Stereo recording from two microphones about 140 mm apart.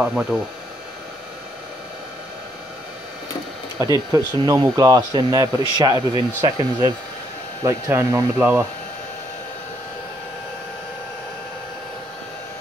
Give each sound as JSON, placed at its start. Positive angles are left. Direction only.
{"t": 0.0, "sound": "speech", "side_deg": -5}
{"t": 3.8, "sound": "speech", "side_deg": -25}